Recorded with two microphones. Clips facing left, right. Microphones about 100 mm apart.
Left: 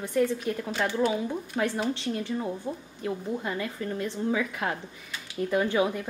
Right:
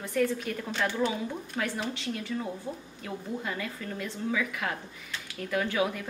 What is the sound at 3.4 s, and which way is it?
A woman's voice, 25° left (ahead or behind).